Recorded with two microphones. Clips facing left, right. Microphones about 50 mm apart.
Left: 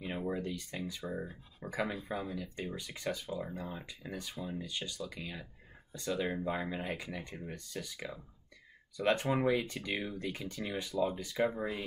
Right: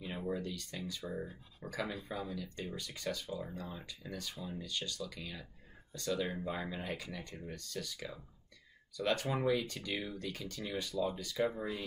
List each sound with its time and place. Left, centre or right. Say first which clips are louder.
0.0 s speech: left 2 dB; centre